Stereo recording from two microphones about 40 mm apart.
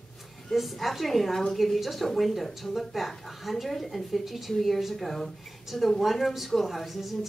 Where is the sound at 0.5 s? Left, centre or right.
Centre.